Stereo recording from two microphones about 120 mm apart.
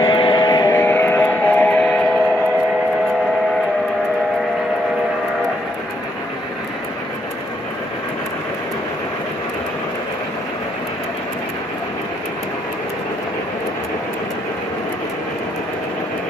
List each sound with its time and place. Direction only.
0.0 s vehicle: 45° left (ahead or behind)
0.7 s music: 15° left (ahead or behind)